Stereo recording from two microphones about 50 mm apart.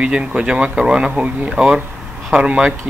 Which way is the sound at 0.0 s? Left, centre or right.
Right.